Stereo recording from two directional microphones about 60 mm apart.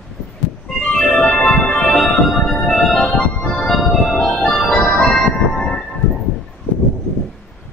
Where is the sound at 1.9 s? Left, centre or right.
Centre.